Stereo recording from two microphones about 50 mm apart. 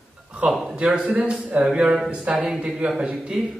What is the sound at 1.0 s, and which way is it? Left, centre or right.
A man's voice, right.